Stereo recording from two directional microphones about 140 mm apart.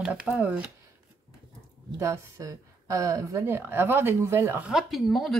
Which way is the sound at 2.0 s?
20° right (ahead or behind).